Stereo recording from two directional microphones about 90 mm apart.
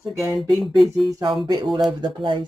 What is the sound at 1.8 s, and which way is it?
Speech, 60° right (ahead or behind).